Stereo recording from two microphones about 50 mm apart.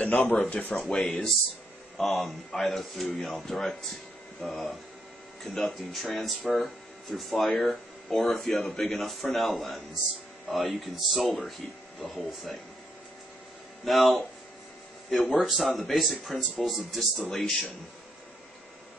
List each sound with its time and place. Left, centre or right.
0.0 s speech: left
0.7 s speech: centre
2.0 s speech: centre
13.8 s speech: centre
17.3 s speech: centre